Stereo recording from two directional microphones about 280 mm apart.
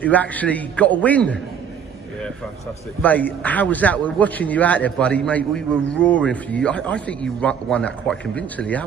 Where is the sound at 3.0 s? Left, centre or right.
Centre.